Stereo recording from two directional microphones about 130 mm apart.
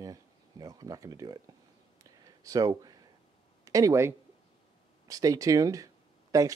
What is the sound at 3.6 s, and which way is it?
Speech, 25° right (ahead or behind).